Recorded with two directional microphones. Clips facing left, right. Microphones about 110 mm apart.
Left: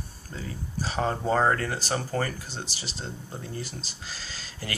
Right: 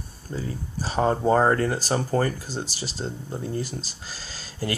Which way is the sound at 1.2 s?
25° right (ahead or behind).